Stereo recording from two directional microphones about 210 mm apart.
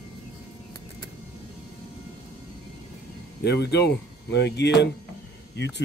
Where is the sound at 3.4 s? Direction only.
50° left (ahead or behind).